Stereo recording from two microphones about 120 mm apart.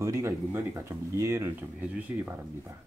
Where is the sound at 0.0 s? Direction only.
25° right (ahead or behind).